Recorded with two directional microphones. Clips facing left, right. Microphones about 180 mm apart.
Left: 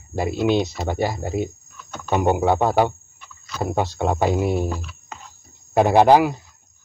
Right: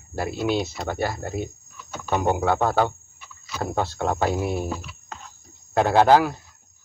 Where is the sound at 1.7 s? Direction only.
5° right (ahead or behind).